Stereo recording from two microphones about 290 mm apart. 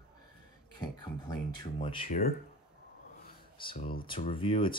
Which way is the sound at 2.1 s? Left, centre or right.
Left.